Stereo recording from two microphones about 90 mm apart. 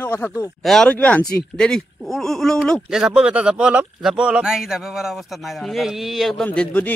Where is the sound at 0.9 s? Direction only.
15° left (ahead or behind).